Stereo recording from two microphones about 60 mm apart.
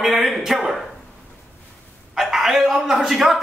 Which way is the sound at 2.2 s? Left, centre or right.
Centre.